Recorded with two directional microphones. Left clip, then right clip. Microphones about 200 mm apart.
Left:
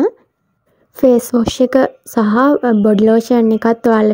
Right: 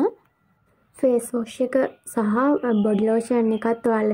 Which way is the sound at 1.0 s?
40° left (ahead or behind).